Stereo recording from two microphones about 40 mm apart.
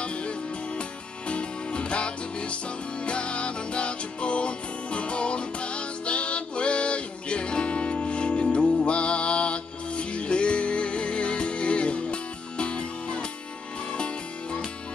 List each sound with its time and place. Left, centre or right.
0.0 s music: left